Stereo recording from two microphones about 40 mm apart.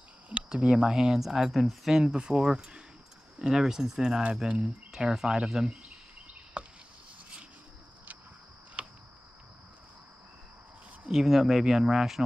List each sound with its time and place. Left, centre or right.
0.3 s speech: right
1.2 s speech: centre
6.6 s chop: right
8.8 s a sound: right
11.1 s speech: centre